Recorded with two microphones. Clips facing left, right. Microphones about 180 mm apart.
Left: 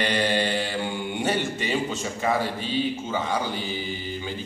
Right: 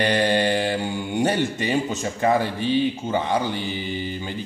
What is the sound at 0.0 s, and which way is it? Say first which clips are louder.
Mantra: right 4 dB; 45° right (ahead or behind).